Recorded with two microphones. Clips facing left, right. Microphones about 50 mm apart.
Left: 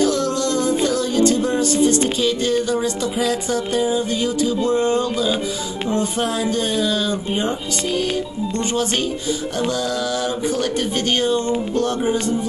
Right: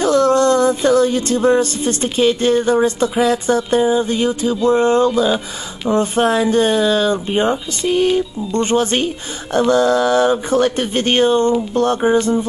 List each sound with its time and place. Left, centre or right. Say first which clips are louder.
0.0 s music: right 6 dB; right
2.1 s speech: right 5 dB; right